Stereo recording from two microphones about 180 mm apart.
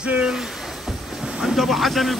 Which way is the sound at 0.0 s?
5° right (ahead or behind).